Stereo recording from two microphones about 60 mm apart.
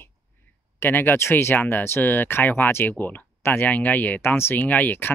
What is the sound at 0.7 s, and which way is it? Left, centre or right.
Speech, left.